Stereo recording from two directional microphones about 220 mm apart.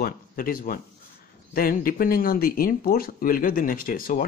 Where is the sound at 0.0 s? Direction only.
40° left (ahead or behind).